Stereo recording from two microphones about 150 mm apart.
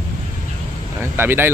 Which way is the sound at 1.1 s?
15° right (ahead or behind).